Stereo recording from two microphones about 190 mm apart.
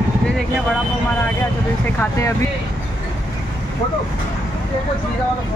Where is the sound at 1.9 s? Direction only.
15° left (ahead or behind).